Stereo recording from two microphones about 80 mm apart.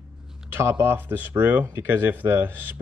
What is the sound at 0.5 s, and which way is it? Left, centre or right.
Speech, right.